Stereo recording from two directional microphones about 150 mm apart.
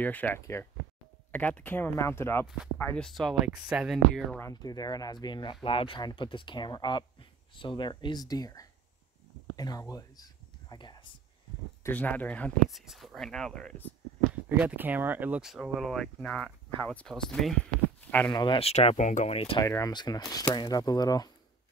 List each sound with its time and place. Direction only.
0.0 s speech: 10° left (ahead or behind)
2.4 s speech: 5° right (ahead or behind)
2.8 s speech: 10° left (ahead or behind)
4.4 s speech: 25° left (ahead or behind)
9.6 s a sound: 25° left (ahead or behind)
11.8 s speech: 10° left (ahead or behind)
12.6 s speech: centre (ahead or behind)
14.5 s speech: 10° right (ahead or behind)
18.3 s speech: 30° left (ahead or behind)
18.6 s speech: 45° left (ahead or behind)
19.6 s speech: 20° left (ahead or behind)